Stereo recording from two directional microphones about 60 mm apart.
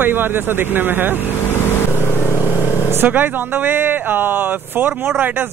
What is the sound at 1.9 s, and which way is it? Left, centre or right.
Vehicle, left.